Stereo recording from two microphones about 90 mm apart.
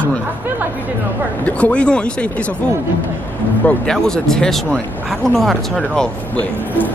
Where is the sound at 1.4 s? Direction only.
15° left (ahead or behind).